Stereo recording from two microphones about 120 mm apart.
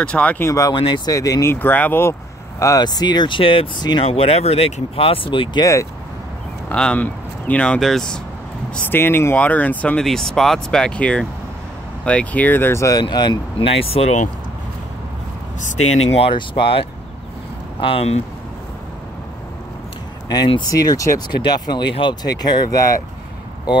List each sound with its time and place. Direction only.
0.0 s speech: 10° left (ahead or behind)
0.5 s speech: 25° left (ahead or behind)
0.7 s speech: 40° left (ahead or behind)
1.1 s speech: 30° left (ahead or behind)
2.6 s speech: 30° left (ahead or behind)
4.0 s speech: 55° left (ahead or behind)
6.7 s speech: 10° left (ahead or behind)
8.7 s speech: 15° left (ahead or behind)
13.0 s speech: 40° left (ahead or behind); by 14.3 s 75° left (ahead or behind)
15.6 s speech: 90° left
16.2 s speech: 45° left (ahead or behind)
20.2 s speech: 40° left (ahead or behind)